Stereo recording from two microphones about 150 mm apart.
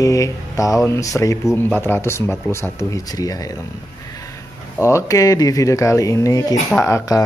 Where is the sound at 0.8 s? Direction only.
20° left (ahead or behind).